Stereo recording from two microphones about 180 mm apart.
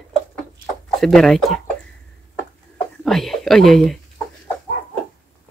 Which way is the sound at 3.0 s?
Centre (ahead or behind).